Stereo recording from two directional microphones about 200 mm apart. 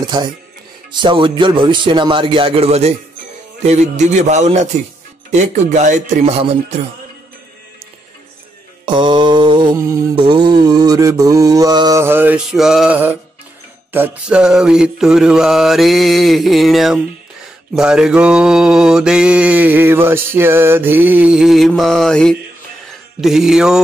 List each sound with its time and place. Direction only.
0.0 s a man's voice: 20° right (ahead or behind)
8.8 s mantra: 25° right (ahead or behind); by 23.8 s 5° right (ahead or behind)